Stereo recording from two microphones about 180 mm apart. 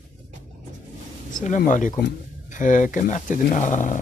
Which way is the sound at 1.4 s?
45° left (ahead or behind).